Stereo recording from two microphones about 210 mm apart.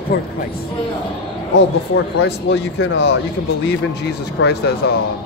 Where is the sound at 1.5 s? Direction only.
55° left (ahead or behind).